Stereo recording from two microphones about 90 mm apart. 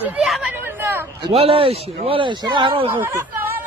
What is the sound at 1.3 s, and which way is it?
A man's voice, 90° right.